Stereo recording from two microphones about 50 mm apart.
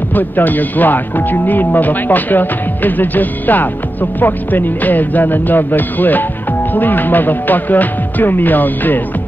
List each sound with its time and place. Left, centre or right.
0.1 s speech: left